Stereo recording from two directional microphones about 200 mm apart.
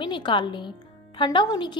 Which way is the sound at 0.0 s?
25° left (ahead or behind).